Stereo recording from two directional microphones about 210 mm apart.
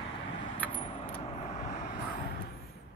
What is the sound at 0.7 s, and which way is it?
Vehicle, 25° left (ahead or behind).